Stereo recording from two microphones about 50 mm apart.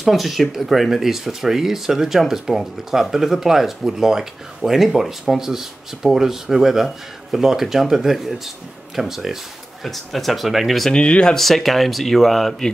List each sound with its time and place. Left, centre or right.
0.0 s speech: centre
10.9 s speech: centre
11.3 s speech: centre